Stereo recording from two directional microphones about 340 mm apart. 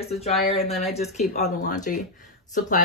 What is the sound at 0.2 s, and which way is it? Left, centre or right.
Speech, centre.